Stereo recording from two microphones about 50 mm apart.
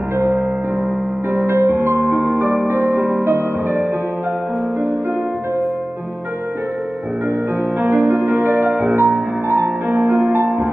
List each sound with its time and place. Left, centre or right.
1.3 s music: right
7.8 s music: right